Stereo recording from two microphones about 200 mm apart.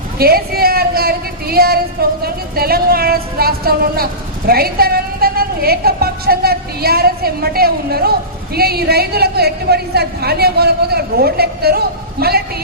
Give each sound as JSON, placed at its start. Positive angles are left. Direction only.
{"t": 0.2, "sound": "a woman's voice", "side_deg": -50}